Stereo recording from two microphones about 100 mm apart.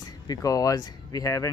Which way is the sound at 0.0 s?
40° left (ahead or behind).